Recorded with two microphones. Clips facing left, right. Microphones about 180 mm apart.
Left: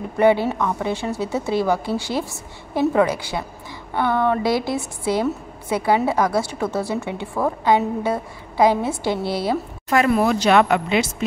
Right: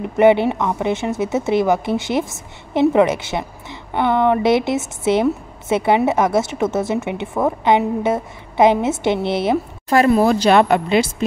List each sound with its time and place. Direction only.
0.0 s a woman's voice: 20° right (ahead or behind); by 11.2 s 35° right (ahead or behind)